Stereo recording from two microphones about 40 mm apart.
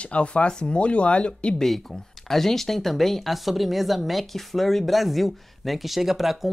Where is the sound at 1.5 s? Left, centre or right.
Centre.